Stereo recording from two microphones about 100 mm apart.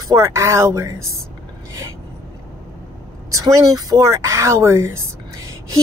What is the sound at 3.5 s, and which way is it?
Speech, 40° right (ahead or behind).